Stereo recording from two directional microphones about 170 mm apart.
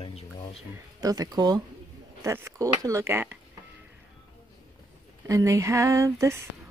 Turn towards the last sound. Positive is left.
turn(degrees=-15)  # may be behind; listen again after turning